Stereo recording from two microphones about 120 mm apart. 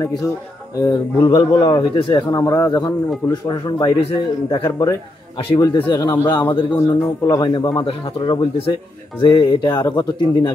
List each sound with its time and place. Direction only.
0.0 s speech: 25° left (ahead or behind)